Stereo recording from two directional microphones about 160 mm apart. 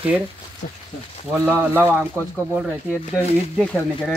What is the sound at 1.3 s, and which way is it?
Speech, 15° right (ahead or behind).